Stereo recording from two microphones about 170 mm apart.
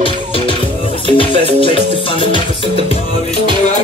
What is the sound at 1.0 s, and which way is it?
Music, 30° left (ahead or behind).